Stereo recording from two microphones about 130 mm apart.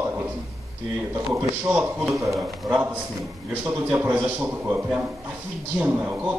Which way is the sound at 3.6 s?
10° right (ahead or behind).